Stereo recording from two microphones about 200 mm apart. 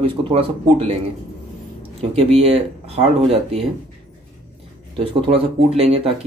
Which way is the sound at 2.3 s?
30° right (ahead or behind).